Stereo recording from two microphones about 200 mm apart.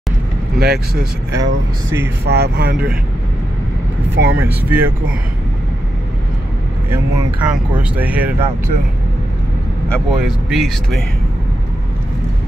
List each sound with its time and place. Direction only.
0.6 s speech: 55° right (ahead or behind)
4.1 s speech: 55° right (ahead or behind)
4.4 s speech: 10° right (ahead or behind)
7.4 s speech: 5° right (ahead or behind)
9.8 s speech: centre (ahead or behind)